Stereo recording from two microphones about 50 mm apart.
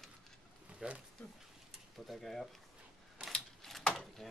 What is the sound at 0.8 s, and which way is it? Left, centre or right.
Speech, centre.